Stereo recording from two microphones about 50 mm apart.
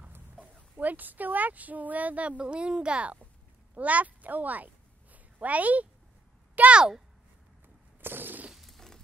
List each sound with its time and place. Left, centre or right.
0.7 s a woman's voice: right
8.0 s a sound: right
8.5 s jackhammer: centre